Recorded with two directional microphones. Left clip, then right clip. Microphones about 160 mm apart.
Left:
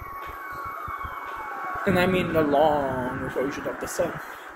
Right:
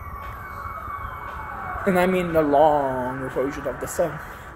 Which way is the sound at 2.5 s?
10° left (ahead or behind).